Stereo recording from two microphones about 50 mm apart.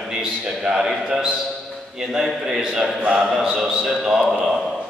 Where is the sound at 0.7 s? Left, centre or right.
Centre.